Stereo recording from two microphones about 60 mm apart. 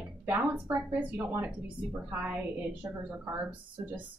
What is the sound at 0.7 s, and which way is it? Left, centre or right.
Speech, right.